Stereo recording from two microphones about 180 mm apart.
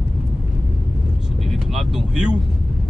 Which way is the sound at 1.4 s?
Centre (ahead or behind).